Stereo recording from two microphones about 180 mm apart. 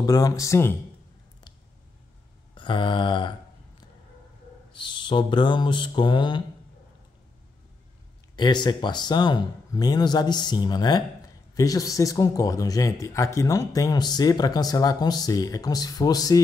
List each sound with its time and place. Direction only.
0.0 s speech: 20° left (ahead or behind)
2.5 s mantra: 25° left (ahead or behind)
4.7 s speech: 25° left (ahead or behind)
8.4 s speech: 25° left (ahead or behind)